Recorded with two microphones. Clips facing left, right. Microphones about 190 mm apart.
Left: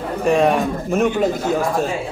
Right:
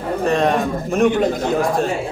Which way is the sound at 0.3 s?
10° left (ahead or behind).